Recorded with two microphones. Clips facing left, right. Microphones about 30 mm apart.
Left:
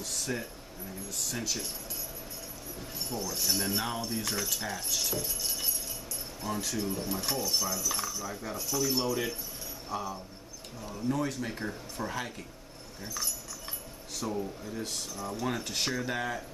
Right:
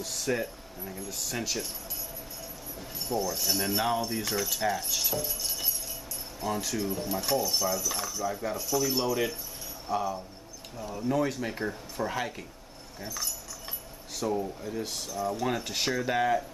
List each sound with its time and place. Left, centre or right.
0.0 s speech: centre
1.0 s speech: centre
1.3 s speech: centre
3.0 s speech: centre
13.0 s speech: centre